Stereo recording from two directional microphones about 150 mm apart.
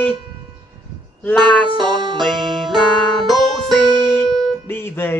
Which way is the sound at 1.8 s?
30° right (ahead or behind).